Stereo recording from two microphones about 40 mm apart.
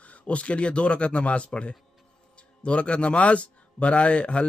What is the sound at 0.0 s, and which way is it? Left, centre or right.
A man's voice, left.